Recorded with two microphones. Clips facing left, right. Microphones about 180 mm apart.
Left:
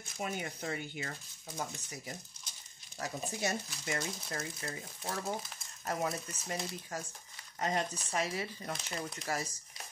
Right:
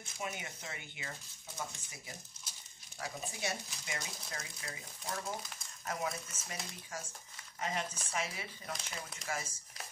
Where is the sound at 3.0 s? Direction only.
45° left (ahead or behind).